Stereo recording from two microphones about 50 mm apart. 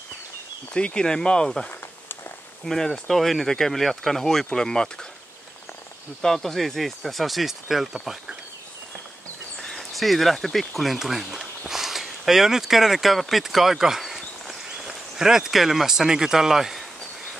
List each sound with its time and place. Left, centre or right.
0.7 s speech: centre
6.2 s speech: centre
9.6 s speech: centre